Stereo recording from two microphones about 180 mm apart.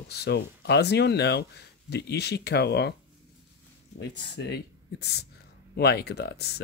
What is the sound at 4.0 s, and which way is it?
Speech, 70° left (ahead or behind).